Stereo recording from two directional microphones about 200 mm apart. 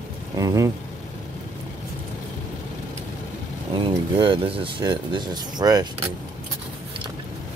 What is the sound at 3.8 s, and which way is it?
Speech, 25° right (ahead or behind).